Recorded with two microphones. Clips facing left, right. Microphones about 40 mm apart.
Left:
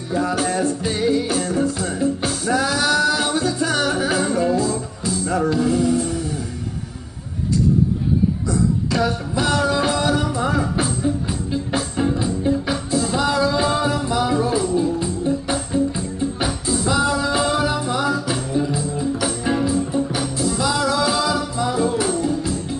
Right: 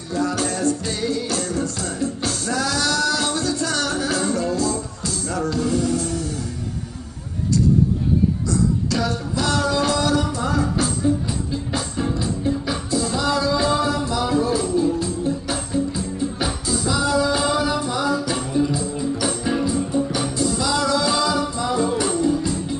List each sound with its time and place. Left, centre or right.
0.1 s music: centre
8.5 s music: centre
16.8 s music: left
18.1 s music: centre